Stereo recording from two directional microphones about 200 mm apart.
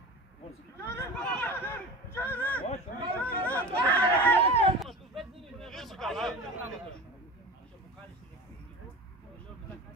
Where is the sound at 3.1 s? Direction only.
5° left (ahead or behind).